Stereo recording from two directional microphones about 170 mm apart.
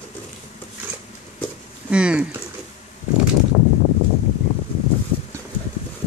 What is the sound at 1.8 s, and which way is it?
Speech, 5° right (ahead or behind).